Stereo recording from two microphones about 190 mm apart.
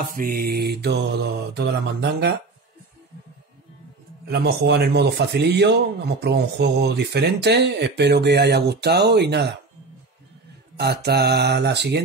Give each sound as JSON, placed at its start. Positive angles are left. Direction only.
{"t": 0.1, "sound": "a man's voice", "side_deg": -50}
{"t": 4.3, "sound": "a man's voice", "side_deg": -60}
{"t": 10.8, "sound": "a man's voice", "side_deg": -60}